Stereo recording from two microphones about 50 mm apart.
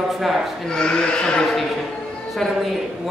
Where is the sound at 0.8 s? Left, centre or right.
Centre.